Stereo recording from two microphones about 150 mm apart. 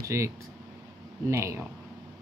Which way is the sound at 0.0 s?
20° right (ahead or behind).